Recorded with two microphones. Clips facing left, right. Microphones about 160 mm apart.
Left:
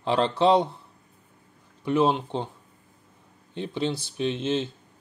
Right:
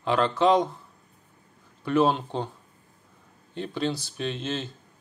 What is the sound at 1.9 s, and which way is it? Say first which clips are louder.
Speech: even; 20° left (ahead or behind).